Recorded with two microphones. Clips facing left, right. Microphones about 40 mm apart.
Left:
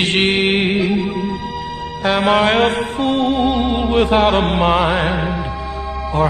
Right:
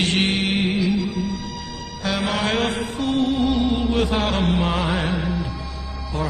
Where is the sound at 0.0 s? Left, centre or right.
Left.